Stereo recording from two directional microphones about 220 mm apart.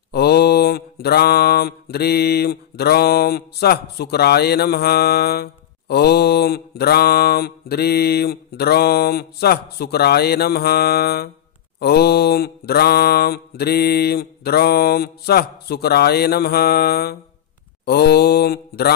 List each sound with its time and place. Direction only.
0.1 s mantra: 45° left (ahead or behind)